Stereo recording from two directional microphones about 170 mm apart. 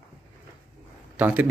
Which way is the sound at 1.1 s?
10° right (ahead or behind).